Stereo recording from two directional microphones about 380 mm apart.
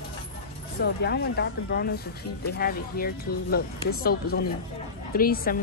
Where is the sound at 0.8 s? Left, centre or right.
Left.